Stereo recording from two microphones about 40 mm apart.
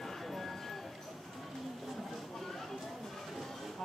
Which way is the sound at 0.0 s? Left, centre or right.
Centre.